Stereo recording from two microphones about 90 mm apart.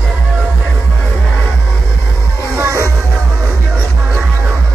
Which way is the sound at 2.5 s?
35° right (ahead or behind).